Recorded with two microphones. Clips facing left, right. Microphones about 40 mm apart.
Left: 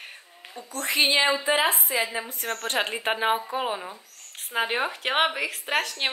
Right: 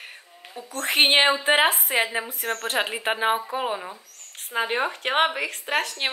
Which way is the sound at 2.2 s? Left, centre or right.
Centre.